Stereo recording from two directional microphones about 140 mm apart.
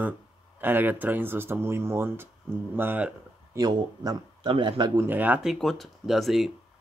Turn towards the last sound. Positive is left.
turn(degrees=0)  # may be behind; listen again after turning